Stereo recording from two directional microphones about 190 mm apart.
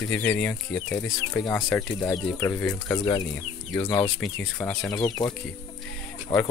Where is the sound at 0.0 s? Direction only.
5° left (ahead or behind).